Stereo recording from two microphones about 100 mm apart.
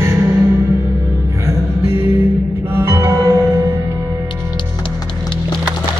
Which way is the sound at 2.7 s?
25° right (ahead or behind).